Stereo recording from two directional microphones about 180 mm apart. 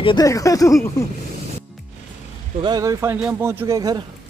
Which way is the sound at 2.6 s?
20° right (ahead or behind).